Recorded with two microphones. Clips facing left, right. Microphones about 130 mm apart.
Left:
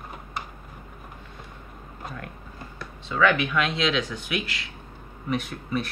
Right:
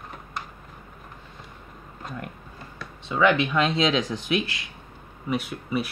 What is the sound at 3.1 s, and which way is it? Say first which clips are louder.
Speech: right 1 dB; 20° right (ahead or behind).